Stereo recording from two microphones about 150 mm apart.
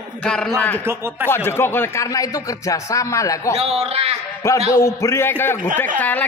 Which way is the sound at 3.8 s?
40° right (ahead or behind).